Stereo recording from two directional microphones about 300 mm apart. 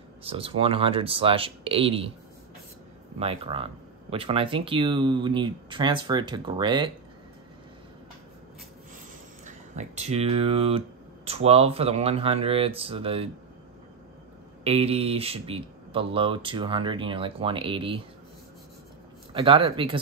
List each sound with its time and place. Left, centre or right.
0.2 s speech: centre
3.2 s speech: centre
9.8 s speech: right
14.6 s speech: centre
19.3 s speech: centre